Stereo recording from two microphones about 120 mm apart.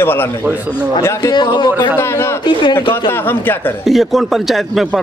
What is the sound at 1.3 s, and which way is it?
Speech, 40° left (ahead or behind).